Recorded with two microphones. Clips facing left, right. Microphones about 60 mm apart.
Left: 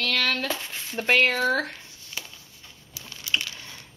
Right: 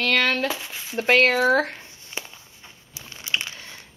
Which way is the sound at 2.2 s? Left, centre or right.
Right.